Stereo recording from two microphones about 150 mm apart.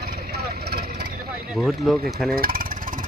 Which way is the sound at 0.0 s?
90° right.